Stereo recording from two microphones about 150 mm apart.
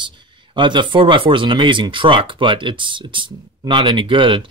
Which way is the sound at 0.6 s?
30° right (ahead or behind).